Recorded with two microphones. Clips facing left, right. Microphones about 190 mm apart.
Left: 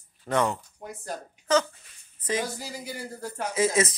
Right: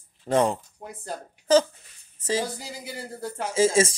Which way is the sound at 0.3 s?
30° right (ahead or behind).